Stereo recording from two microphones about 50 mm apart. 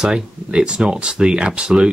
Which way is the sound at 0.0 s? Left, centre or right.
Centre.